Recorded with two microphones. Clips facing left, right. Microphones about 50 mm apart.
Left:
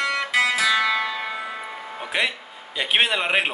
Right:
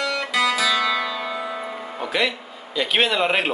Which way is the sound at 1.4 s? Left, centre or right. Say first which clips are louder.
Right 3 dB; centre.